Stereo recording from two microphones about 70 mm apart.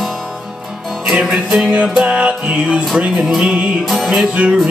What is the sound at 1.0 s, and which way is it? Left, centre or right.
Music, centre.